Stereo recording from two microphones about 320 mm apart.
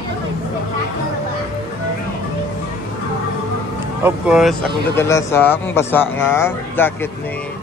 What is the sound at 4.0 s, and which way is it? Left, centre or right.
Speech, centre.